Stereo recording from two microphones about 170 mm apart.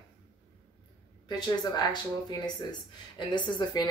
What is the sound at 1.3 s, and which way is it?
A woman's voice, 25° left (ahead or behind).